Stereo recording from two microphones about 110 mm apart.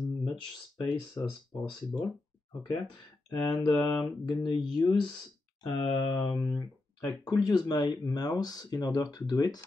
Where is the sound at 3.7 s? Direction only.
40° left (ahead or behind).